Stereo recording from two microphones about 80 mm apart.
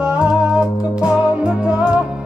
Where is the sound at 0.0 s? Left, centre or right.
Centre.